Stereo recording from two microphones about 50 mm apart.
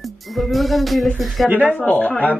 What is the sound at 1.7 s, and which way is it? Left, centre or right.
Speech, left.